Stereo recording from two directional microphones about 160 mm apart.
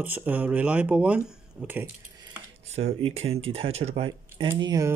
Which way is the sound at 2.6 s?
40° right (ahead or behind).